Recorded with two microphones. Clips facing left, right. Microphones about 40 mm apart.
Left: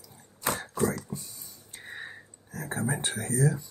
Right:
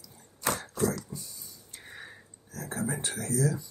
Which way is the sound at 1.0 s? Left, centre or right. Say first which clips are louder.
Left 3 dB; left.